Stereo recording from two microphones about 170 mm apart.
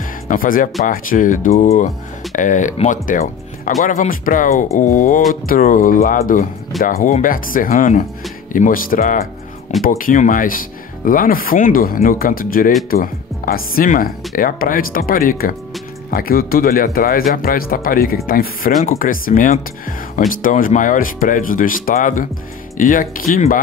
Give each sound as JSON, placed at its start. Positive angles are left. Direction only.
{"t": 0.3, "sound": "speech", "side_deg": 55}